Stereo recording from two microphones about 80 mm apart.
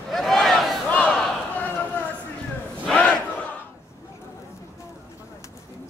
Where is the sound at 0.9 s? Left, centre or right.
Centre.